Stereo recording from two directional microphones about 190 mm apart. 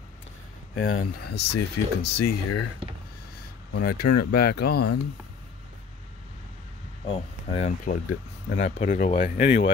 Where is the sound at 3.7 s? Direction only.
50° left (ahead or behind).